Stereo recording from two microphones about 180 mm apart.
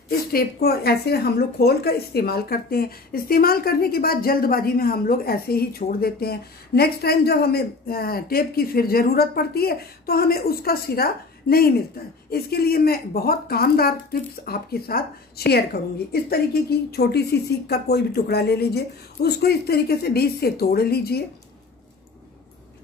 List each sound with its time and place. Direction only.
0.3 s a woman's voice: 55° left (ahead or behind)